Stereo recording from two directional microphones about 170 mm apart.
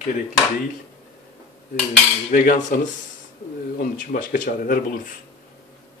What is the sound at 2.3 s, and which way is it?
Speech, 50° left (ahead or behind).